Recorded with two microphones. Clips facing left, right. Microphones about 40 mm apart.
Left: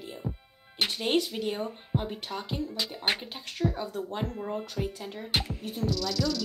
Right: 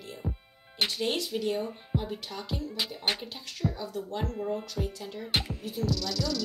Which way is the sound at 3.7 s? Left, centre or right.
Left.